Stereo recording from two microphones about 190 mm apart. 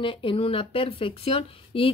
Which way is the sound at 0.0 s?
25° left (ahead or behind).